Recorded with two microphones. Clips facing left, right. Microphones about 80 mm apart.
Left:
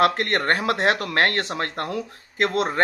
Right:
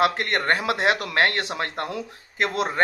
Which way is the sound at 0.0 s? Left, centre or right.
Left.